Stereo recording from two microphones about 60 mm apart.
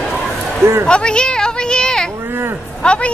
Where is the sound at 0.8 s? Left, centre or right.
Centre.